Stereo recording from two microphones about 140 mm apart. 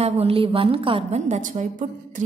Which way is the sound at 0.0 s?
45° right (ahead or behind).